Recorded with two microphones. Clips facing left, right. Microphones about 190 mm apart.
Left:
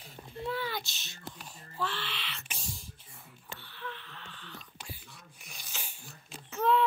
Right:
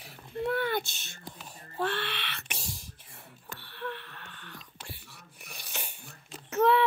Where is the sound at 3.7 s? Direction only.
60° right (ahead or behind).